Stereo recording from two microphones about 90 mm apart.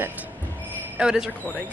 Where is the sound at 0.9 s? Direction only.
10° right (ahead or behind).